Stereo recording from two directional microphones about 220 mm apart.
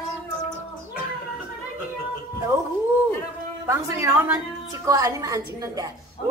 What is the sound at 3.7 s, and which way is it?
A woman's voice, 10° right (ahead or behind).